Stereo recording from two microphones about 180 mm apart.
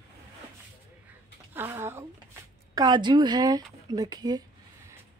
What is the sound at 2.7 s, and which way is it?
Speech, 25° right (ahead or behind).